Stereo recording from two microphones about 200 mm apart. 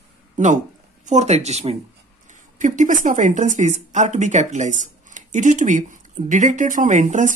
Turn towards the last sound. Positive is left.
turn(degrees=-40)  # may be behind; listen again after turning